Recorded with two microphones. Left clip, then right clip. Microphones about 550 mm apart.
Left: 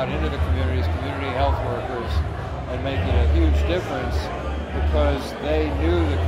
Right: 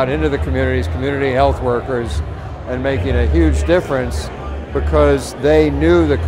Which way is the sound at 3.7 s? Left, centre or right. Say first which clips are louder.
Right 11 dB; right.